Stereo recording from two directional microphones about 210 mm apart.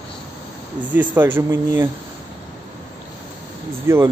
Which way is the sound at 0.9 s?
10° right (ahead or behind).